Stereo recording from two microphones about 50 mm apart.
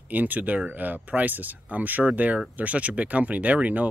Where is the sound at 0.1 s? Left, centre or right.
Right.